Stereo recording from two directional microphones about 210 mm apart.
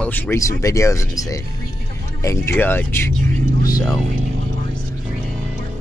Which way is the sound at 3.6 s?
15° left (ahead or behind).